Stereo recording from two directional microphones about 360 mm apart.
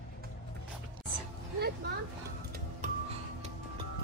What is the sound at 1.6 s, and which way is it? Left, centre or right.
Speech, right.